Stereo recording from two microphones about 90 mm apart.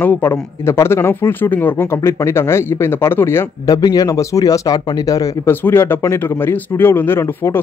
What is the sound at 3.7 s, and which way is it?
A man's voice, 45° left (ahead or behind).